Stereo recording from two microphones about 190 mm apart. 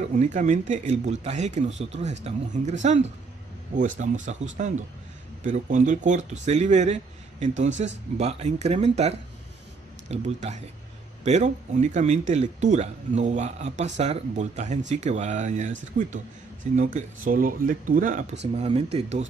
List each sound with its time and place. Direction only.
0.1 s speech: 40° right (ahead or behind)
18.6 s speech: 35° right (ahead or behind)